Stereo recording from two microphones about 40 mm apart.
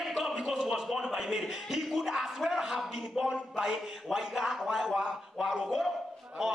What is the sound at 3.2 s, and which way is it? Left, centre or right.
Speech, centre.